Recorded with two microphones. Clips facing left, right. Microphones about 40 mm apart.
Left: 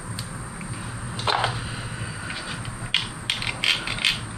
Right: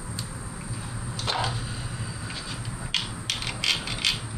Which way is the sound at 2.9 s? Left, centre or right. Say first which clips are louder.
Left 4 dB; left.